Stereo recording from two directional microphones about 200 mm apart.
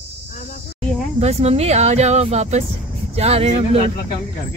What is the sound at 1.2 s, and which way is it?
A woman's voice, 30° right (ahead or behind).